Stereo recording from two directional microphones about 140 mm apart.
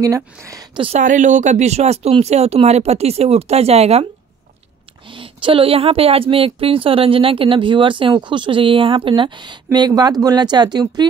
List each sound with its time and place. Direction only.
0.0 s speech: 25° right (ahead or behind)
0.9 s speech: 60° right (ahead or behind)
5.0 s speech: 35° right (ahead or behind)